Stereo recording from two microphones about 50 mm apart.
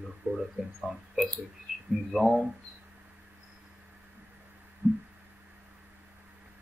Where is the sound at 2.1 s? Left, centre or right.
Centre.